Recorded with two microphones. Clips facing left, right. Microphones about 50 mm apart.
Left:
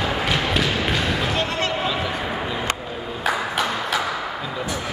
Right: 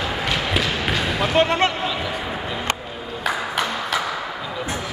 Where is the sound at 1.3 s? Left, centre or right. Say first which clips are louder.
Right 6 dB; right.